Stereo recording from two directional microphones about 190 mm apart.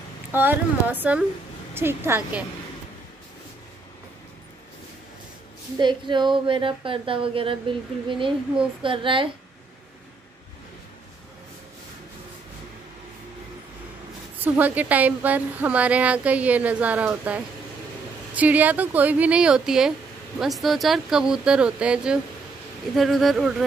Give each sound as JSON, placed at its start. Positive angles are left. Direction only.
{"t": 0.3, "sound": "a woman's voice", "side_deg": -10}
{"t": 1.7, "sound": "a sound", "side_deg": -10}
{"t": 2.0, "sound": "a woman's voice", "side_deg": -10}
{"t": 5.8, "sound": "speech", "side_deg": -25}
{"t": 14.4, "sound": "a woman's voice", "side_deg": -10}